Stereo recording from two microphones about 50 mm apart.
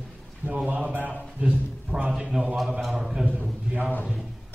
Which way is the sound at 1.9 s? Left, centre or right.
Centre.